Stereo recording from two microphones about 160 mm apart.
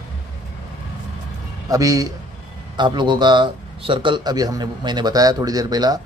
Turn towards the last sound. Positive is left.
turn(degrees=-25)  # may be behind; listen again after turning